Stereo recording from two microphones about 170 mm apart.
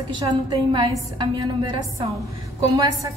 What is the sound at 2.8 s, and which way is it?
Speech, 20° right (ahead or behind).